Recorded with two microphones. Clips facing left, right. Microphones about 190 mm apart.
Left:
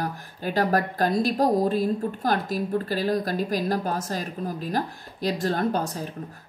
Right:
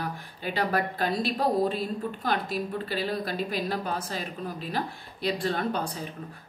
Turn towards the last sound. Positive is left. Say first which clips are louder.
# left 4 dB
turn(degrees=45)  # may be behind; listen again after turning